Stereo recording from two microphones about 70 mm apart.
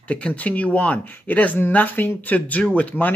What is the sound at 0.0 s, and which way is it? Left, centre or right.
Speech, left.